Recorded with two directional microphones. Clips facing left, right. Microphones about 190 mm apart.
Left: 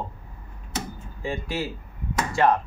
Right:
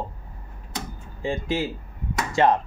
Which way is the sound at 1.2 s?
20° right (ahead or behind).